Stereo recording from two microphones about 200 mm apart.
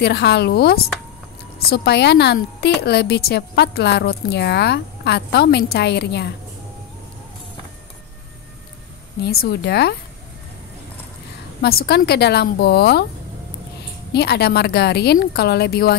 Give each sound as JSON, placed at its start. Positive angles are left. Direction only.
{"t": 0.0, "sound": "a woman's voice", "side_deg": 55}
{"t": 9.2, "sound": "a woman's voice", "side_deg": 50}
{"t": 11.6, "sound": "a woman's voice", "side_deg": 50}
{"t": 14.1, "sound": "a woman's voice", "side_deg": 55}